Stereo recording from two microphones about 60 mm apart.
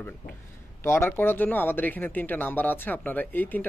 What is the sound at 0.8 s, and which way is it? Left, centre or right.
Speech, left.